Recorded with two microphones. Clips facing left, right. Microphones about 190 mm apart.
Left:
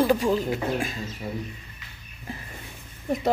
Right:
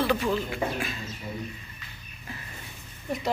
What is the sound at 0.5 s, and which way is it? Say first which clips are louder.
Speech: left 3 dB; 40° left (ahead or behind).